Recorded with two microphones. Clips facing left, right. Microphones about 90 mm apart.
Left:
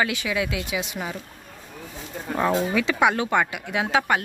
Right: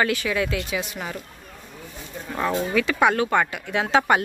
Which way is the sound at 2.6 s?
20° left (ahead or behind).